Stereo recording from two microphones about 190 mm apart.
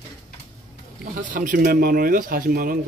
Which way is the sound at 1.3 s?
45° right (ahead or behind).